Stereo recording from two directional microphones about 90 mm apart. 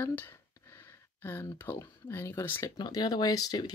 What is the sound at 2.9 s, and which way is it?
Speech, 50° left (ahead or behind).